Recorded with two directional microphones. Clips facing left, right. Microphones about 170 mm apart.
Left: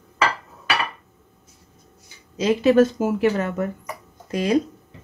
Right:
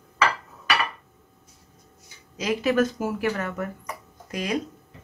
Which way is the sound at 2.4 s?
30° left (ahead or behind).